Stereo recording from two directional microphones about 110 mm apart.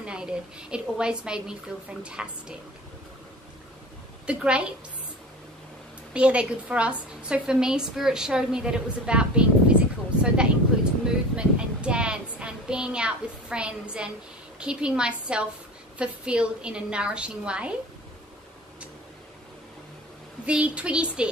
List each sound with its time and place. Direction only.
0.0 s a woman's voice: 10° right (ahead or behind)
4.3 s a woman's voice: 10° right (ahead or behind)
6.1 s a woman's voice: 10° right (ahead or behind)
20.4 s a woman's voice: 10° right (ahead or behind)